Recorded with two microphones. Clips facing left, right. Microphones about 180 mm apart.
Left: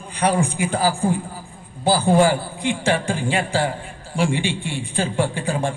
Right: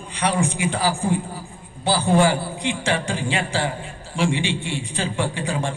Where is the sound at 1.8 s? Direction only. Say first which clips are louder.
Left 2 dB; 45° left (ahead or behind).